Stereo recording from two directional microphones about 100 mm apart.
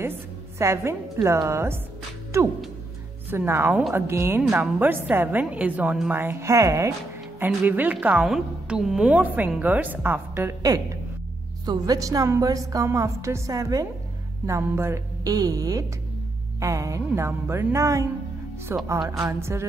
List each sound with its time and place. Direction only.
0.0 s a woman's voice: 25° right (ahead or behind)
7.3 s a woman's voice: 20° right (ahead or behind)
11.6 s a woman's voice: 45° right (ahead or behind); by 15.3 s 25° right (ahead or behind)
15.3 s a woman's voice: 40° right (ahead or behind)